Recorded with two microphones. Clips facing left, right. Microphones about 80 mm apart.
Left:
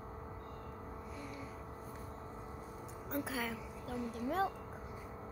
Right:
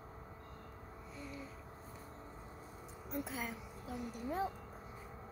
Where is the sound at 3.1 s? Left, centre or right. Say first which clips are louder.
Left 3 dB; left.